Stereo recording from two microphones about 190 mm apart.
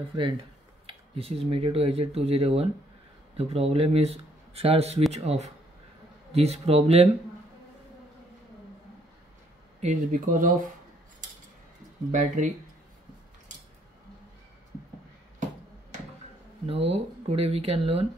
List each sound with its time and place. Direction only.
0.1 s speech: 25° right (ahead or behind)
9.8 s speech: 40° right (ahead or behind)
12.1 s speech: 40° right (ahead or behind)
16.6 s speech: 30° right (ahead or behind)